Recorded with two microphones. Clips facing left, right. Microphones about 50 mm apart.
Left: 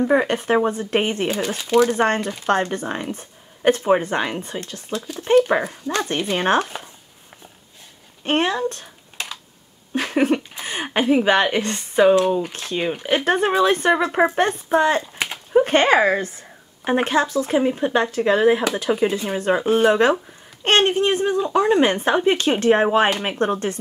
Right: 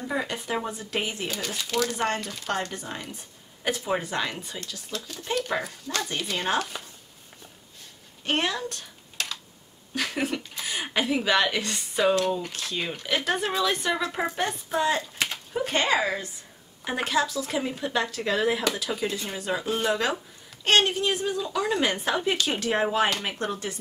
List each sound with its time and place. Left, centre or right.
0.0 s speech: left
1.3 s speech: left
2.0 s speech: left
4.9 s speech: left
6.6 s chopping: left
8.2 s speech: left
9.2 s computer keyboard: centre
9.9 s speech: left
19.3 s speech: left